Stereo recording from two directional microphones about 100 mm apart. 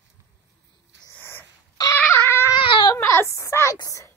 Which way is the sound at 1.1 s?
20° left (ahead or behind).